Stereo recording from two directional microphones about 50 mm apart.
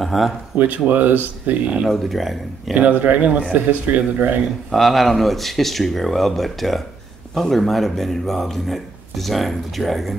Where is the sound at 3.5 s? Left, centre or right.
Right.